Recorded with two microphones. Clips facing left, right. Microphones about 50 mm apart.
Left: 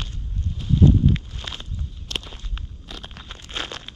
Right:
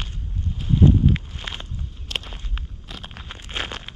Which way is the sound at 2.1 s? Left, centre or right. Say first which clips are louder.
Right 2 dB; centre.